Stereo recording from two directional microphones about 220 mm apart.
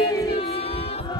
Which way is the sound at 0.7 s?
25° left (ahead or behind).